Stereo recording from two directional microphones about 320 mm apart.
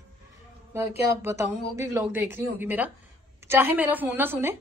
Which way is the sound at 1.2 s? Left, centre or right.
Centre.